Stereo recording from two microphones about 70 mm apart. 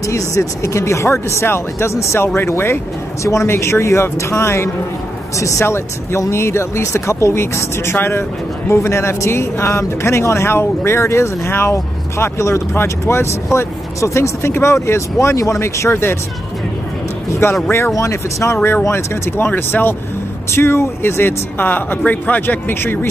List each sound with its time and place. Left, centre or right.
0.0 s speech: left
17.6 s speech: left
17.9 s speech: left